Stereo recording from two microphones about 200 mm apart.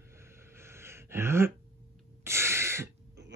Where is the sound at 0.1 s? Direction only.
15° right (ahead or behind).